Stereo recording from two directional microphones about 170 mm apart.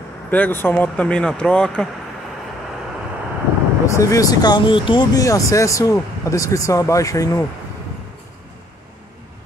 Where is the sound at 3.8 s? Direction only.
20° left (ahead or behind).